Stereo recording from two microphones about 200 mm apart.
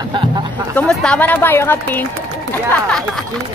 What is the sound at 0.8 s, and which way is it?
Speech, 5° left (ahead or behind).